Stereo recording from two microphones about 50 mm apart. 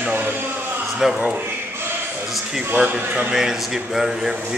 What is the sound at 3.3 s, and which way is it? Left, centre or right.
A woman's voice, centre.